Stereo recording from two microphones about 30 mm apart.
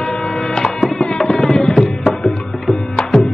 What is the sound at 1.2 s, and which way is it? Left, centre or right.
Music, centre.